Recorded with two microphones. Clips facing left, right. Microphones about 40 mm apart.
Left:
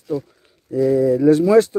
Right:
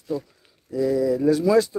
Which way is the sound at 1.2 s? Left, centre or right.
Left.